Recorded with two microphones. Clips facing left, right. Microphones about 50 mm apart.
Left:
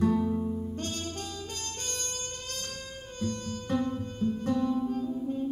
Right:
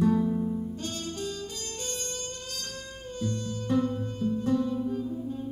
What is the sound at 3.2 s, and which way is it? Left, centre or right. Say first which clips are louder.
Music: right 1 dB; left.